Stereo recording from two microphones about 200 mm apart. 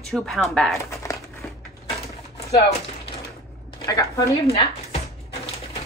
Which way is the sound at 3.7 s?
15° left (ahead or behind).